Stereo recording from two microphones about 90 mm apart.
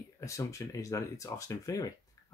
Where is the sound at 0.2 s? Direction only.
35° left (ahead or behind).